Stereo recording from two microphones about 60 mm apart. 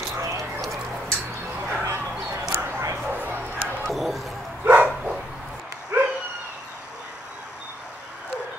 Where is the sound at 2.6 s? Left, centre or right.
Right.